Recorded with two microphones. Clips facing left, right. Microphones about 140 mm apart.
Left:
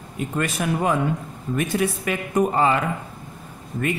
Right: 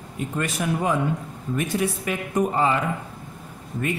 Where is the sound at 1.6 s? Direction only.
80° left.